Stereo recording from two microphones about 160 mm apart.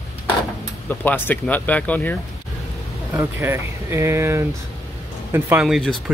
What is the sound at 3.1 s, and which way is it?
Speech, 15° right (ahead or behind).